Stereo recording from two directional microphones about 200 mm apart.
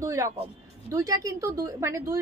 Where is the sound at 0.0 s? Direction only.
15° right (ahead or behind).